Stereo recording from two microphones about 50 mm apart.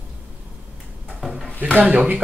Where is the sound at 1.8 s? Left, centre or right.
Right.